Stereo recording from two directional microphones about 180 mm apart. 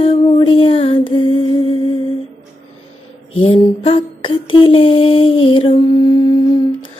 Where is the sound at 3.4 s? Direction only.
30° left (ahead or behind).